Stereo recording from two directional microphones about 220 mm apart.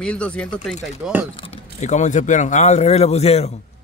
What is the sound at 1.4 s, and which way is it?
Speech, 30° left (ahead or behind).